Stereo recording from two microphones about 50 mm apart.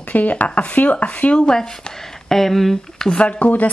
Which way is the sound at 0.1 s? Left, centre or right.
Left.